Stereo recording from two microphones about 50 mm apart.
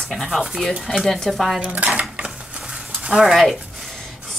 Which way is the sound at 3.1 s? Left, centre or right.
Centre.